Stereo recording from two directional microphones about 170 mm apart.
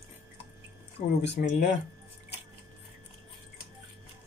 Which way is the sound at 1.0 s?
35° left (ahead or behind).